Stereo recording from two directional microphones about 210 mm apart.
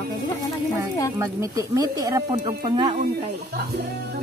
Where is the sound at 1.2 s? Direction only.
15° right (ahead or behind).